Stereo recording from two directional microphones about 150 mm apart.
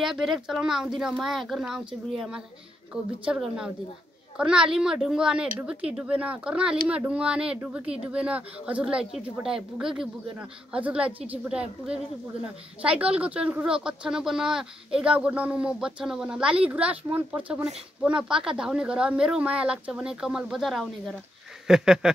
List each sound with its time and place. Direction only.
0.0 s speech: centre (ahead or behind)